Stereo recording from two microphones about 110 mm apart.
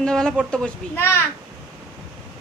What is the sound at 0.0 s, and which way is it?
Speech, 5° left (ahead or behind).